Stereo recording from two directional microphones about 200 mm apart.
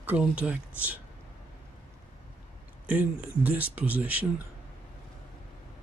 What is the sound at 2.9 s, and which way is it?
Speech, 10° right (ahead or behind).